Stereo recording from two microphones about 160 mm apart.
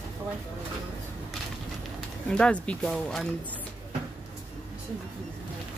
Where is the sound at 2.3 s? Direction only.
5° left (ahead or behind).